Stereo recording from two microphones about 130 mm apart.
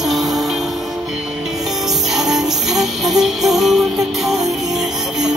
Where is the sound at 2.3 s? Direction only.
5° right (ahead or behind).